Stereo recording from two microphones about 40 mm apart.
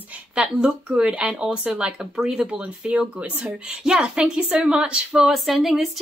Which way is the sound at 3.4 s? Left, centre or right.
Centre.